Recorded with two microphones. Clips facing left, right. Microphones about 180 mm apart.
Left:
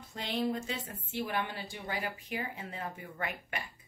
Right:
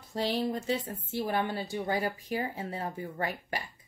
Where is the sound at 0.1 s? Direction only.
35° right (ahead or behind).